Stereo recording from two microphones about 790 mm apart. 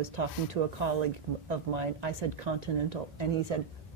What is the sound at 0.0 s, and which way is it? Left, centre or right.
Speech, right.